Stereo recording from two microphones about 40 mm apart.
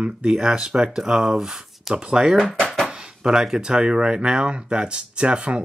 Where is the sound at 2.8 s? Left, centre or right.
Centre.